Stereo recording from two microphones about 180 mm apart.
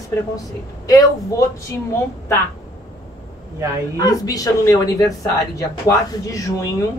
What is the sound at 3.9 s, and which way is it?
Speech, 20° left (ahead or behind).